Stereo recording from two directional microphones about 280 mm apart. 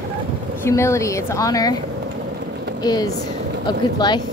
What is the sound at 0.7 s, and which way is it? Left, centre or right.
Speech, centre.